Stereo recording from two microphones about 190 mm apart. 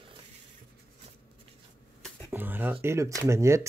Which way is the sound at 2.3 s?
10° right (ahead or behind).